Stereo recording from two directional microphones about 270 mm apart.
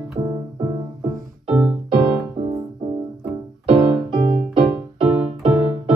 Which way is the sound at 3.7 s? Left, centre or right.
Centre.